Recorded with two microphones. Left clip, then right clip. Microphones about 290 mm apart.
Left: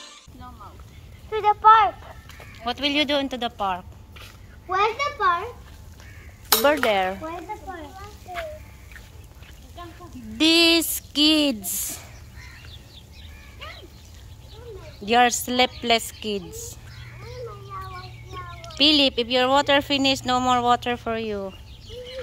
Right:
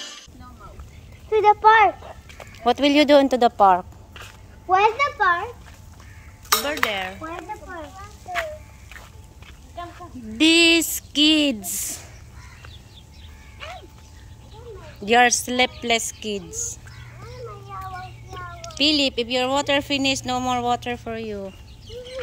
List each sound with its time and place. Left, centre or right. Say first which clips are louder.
1.3 s speech: right 1 dB; right
2.6 s speech: right 6 dB; centre
4.6 s a child's voice: right 5 dB; centre
6.6 s dishes: left 5 dB; centre
10.3 s speech: right 2 dB; centre
15.0 s speech: right 2 dB; centre
17.7 s a sound: right 2 dB; right
18.8 s speech: left 2 dB; centre